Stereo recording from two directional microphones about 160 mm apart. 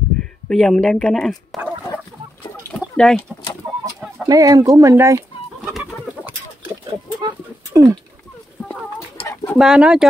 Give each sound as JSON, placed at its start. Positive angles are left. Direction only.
{"t": 0.2, "sound": "speech", "side_deg": 5}
{"t": 3.0, "sound": "speech", "side_deg": 5}
{"t": 4.3, "sound": "speech", "side_deg": -20}
{"t": 5.7, "sound": "chicken", "side_deg": 0}
{"t": 7.2, "sound": "a sound", "side_deg": -20}
{"t": 9.5, "sound": "speech", "side_deg": -5}